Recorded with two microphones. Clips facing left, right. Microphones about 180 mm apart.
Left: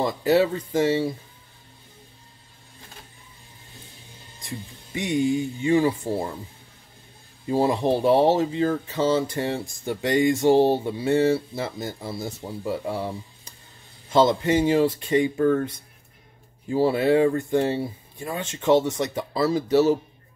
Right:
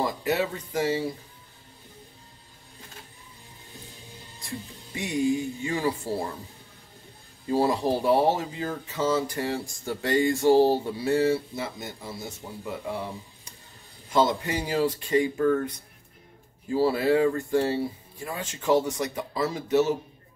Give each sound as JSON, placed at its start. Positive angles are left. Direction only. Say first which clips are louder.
{"t": 0.0, "sound": "speech", "louder": "left 6 dB", "side_deg": 30}
{"t": 4.5, "sound": "speech", "louder": "left 1 dB", "side_deg": 20}
{"t": 7.4, "sound": "speech", "louder": "left 2 dB", "side_deg": 20}
{"t": 14.1, "sound": "speech", "louder": "left 5 dB", "side_deg": 25}